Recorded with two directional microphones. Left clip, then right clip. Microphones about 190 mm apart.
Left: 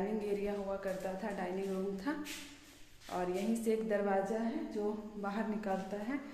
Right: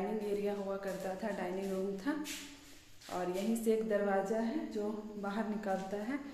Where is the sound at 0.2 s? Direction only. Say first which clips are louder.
Right 1 dB; 10° left (ahead or behind).